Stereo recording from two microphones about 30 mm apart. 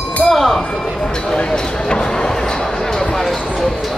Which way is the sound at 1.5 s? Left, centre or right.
Left.